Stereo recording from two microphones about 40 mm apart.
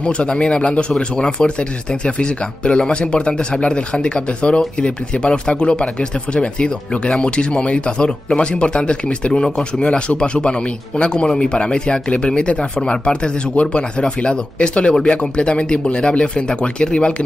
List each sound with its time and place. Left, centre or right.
0.0 s speech: left